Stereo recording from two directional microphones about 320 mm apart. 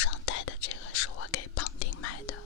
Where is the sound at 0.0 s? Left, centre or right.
Left.